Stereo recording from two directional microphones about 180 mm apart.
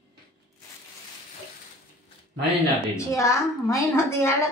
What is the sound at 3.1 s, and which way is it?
A woman's voice, 15° left (ahead or behind).